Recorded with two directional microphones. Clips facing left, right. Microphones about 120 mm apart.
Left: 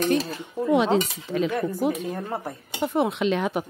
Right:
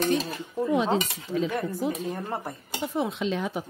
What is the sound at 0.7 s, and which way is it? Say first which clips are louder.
Speech: left 5 dB; 75° left (ahead or behind).